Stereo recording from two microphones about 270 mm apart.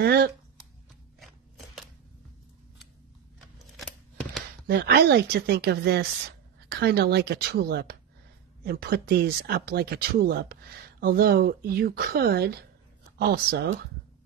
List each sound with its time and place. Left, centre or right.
0.0 s a sound: right
3.5 s scissors: centre
4.6 s speech: right